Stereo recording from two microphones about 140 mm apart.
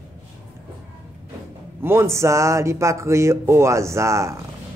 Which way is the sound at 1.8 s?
20° right (ahead or behind).